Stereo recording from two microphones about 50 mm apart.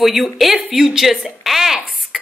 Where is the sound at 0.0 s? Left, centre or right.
Centre.